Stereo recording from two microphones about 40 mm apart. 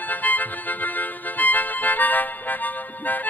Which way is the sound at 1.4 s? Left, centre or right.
Left.